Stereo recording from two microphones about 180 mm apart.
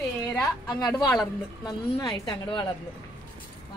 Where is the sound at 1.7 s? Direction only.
25° left (ahead or behind).